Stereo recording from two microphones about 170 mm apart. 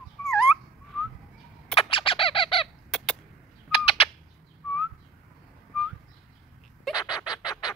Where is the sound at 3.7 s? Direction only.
35° left (ahead or behind).